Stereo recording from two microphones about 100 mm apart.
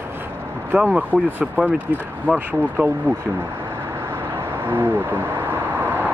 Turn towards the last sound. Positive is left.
turn(degrees=-20)  # may be behind; listen again after turning